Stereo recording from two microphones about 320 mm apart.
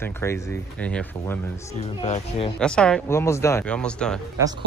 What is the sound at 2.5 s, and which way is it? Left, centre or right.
Speech, centre.